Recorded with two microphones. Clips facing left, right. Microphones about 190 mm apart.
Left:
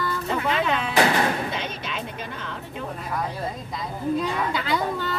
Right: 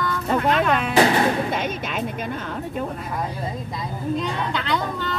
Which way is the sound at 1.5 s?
50° right (ahead or behind).